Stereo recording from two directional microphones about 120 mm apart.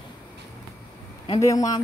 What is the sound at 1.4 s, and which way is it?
Speech, 30° left (ahead or behind).